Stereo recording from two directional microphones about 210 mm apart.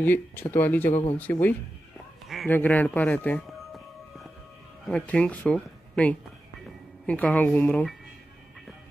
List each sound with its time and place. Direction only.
0.0 s speech: 10° left (ahead or behind)
2.2 s music: 5° left (ahead or behind)
4.8 s speech: 5° left (ahead or behind)